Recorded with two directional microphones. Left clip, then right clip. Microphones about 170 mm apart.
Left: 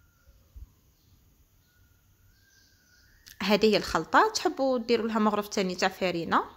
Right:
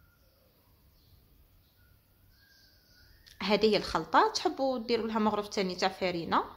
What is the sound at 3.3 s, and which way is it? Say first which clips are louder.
Speech: left 3 dB; 30° left (ahead or behind).